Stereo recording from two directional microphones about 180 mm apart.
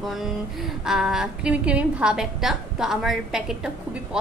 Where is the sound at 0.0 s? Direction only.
Centre (ahead or behind).